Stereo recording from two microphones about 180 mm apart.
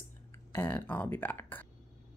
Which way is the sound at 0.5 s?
10° left (ahead or behind).